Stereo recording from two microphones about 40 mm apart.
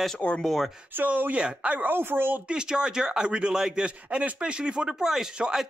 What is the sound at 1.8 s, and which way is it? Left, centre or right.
Speech, right.